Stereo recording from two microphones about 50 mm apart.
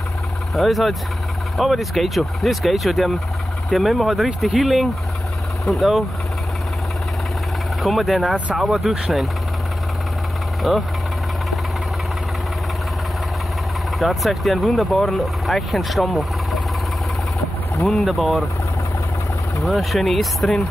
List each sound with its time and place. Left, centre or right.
0.6 s speech: centre
5.7 s speech: left
7.8 s speech: centre
10.6 s speech: centre
13.9 s speech: centre
17.8 s speech: centre
19.6 s speech: centre